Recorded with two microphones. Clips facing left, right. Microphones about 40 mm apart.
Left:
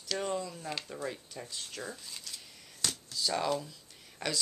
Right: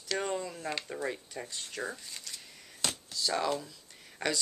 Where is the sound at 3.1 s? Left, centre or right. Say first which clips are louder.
Even; centre.